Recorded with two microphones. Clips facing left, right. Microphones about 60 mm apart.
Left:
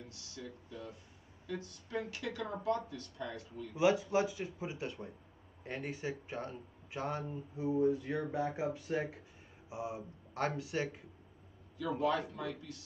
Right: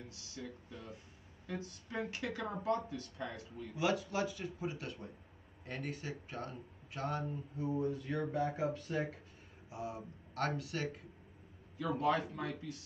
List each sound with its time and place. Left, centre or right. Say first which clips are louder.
1.5 s speech: left 2 dB; right
3.7 s speech: left 5 dB; left
11.8 s speech: even; right